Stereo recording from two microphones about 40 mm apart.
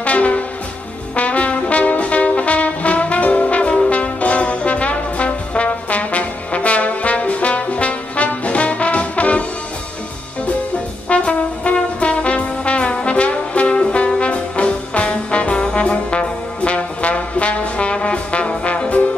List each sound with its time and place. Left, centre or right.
0.0 s music: left
1.1 s brass instrument: left
3.9 s trombone: left
11.1 s brass instrument: left
14.2 s trombone: left